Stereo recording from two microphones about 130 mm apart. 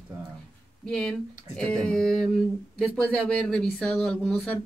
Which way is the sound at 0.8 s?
5° left (ahead or behind).